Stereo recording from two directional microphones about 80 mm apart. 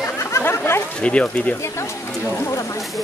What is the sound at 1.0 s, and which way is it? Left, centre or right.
Speech, centre.